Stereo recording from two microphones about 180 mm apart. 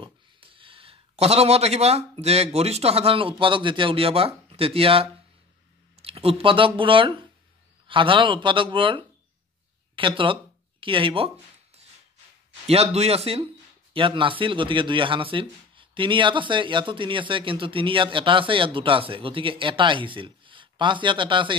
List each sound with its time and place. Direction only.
0.0 s speech: 30° right (ahead or behind)
6.0 s a man's voice: 30° right (ahead or behind)